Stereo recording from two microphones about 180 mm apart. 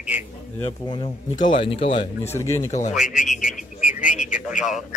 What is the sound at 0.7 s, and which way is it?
Speech, 30° left (ahead or behind).